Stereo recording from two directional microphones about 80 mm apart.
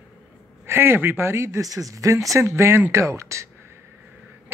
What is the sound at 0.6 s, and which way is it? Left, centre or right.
Speech, right.